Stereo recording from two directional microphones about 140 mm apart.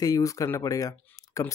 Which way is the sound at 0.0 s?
25° left (ahead or behind).